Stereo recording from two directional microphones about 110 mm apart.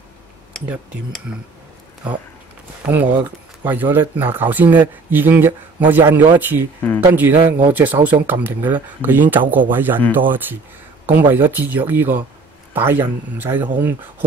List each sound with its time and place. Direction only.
0.5 s a sound: centre (ahead or behind)
2.8 s speech: 15° right (ahead or behind)
6.8 s speech: 15° left (ahead or behind)
7.2 s speech: 20° right (ahead or behind)